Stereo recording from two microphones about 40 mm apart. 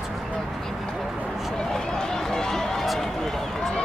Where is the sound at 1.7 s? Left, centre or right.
Centre.